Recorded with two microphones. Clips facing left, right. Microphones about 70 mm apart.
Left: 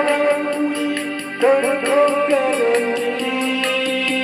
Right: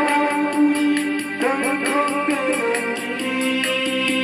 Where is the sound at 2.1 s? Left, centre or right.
Right.